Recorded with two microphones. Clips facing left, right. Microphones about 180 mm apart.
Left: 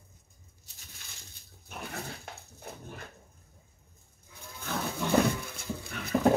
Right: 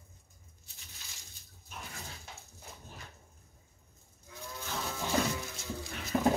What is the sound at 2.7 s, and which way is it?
Dog, 60° left (ahead or behind).